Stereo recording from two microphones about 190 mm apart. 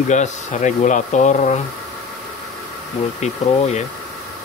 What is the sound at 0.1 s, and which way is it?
Speech, 40° left (ahead or behind).